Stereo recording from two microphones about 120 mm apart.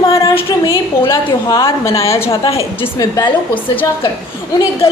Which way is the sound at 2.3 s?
50° left (ahead or behind).